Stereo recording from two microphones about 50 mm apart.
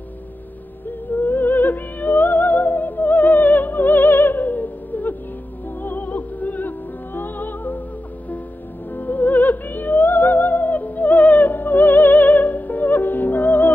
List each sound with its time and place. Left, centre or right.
1.2 s music: left
8.9 s music: left